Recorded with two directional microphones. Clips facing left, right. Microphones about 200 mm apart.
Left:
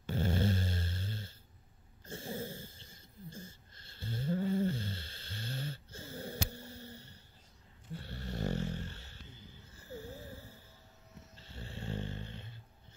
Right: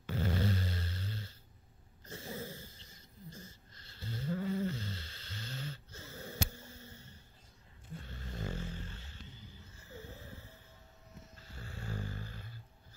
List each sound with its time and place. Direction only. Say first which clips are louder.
0.0 s dog: left 2 dB; 25° left (ahead or behind)
2.0 s a sound: left 3 dB; 30° left (ahead or behind)
2.9 s snoring: left 2 dB; 30° left (ahead or behind)
6.7 s a sound: left 5 dB; 35° left (ahead or behind)
8.1 s snoring: left 6 dB; 35° left (ahead or behind)
11.3 s snoring: left 4 dB; 30° left (ahead or behind)